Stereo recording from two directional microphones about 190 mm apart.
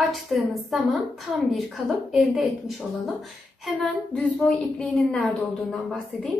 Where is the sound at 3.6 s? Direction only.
Centre (ahead or behind).